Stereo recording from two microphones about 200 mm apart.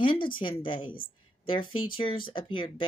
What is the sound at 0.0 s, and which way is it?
A woman's voice, 25° left (ahead or behind).